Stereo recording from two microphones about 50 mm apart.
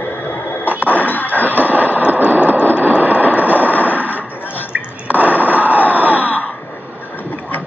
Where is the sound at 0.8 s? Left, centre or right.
Left.